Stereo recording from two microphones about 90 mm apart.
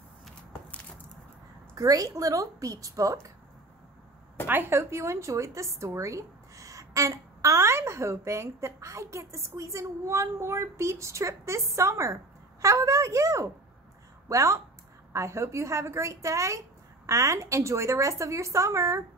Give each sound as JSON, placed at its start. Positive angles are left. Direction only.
{"t": 1.8, "sound": "a woman's voice", "side_deg": -40}
{"t": 4.5, "sound": "a woman's voice", "side_deg": -25}